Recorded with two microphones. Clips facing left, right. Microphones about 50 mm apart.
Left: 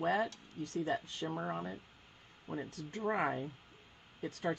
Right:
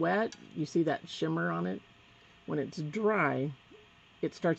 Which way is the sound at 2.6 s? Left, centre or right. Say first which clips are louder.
Right 8 dB; right.